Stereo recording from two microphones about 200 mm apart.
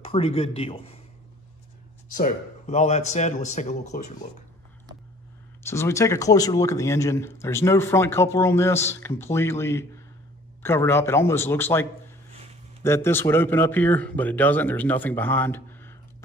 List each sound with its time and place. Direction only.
0.0 s speech: 30° left (ahead or behind)
2.1 s speech: 40° left (ahead or behind)
5.6 s speech: 15° left (ahead or behind)